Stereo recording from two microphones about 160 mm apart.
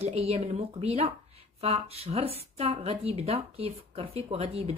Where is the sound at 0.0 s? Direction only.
40° right (ahead or behind).